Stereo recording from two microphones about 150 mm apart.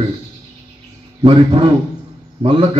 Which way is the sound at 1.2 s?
35° right (ahead or behind).